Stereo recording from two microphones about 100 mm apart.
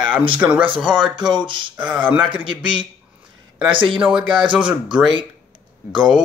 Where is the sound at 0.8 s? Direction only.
50° right (ahead or behind).